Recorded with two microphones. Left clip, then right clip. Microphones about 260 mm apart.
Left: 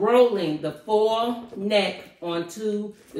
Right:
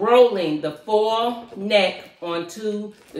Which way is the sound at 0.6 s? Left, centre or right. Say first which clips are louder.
Right 1 dB; right.